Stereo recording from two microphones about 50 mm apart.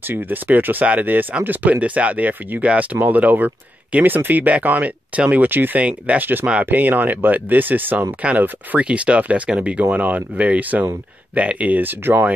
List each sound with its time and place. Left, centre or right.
0.0 s speech: right
5.5 s speech: right
5.8 s speech: right
6.7 s speech: right
8.2 s speech: right